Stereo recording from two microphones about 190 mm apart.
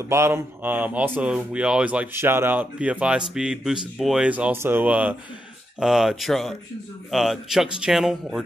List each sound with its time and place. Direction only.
0.1 s speech: 15° right (ahead or behind)